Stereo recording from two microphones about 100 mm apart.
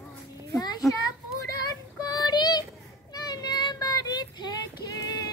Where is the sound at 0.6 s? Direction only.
45° left (ahead or behind).